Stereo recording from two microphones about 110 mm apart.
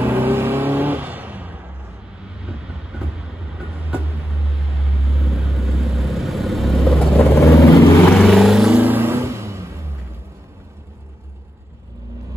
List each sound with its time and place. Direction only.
0.0 s vehicle: 20° right (ahead or behind)
2.4 s train: 5° right (ahead or behind)
7.2 s vehicle: 25° left (ahead or behind)
8.1 s vehicle: centre (ahead or behind)
8.7 s vehicle: 15° right (ahead or behind)